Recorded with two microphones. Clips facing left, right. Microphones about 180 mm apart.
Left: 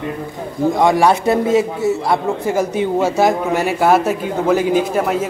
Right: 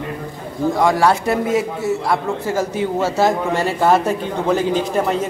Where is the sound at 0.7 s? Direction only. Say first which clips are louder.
Left 2 dB; 20° left (ahead or behind).